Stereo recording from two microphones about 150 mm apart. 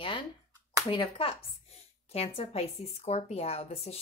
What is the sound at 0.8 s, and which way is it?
A child's voice, 35° left (ahead or behind).